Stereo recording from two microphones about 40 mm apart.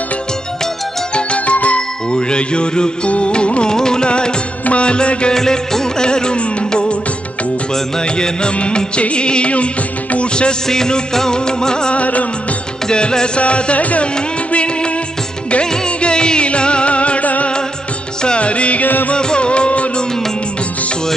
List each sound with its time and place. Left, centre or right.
1.1 s music: left
3.7 s carnatic music: centre
4.6 s music: left
5.3 s music: centre
8.0 s music: left
10.7 s music: centre
11.9 s music: left
12.8 s music: centre; by 17.5 s left
18.2 s music: left
19.1 s music: left